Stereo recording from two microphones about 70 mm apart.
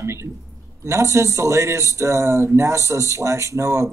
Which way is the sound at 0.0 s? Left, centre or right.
Right.